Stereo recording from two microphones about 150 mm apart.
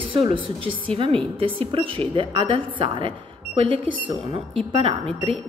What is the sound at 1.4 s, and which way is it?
Speech, 35° right (ahead or behind).